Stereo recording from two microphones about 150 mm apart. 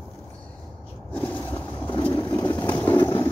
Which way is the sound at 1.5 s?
35° left (ahead or behind).